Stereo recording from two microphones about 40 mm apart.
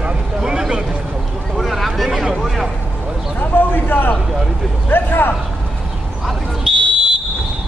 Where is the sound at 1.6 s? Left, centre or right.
Centre.